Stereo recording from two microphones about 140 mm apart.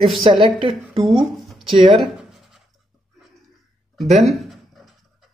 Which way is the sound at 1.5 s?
Centre (ahead or behind).